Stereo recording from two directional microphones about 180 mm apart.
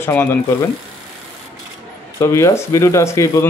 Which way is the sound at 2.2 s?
15° left (ahead or behind).